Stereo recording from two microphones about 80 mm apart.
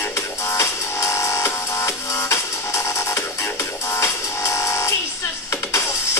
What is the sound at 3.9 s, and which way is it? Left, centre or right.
Music, left.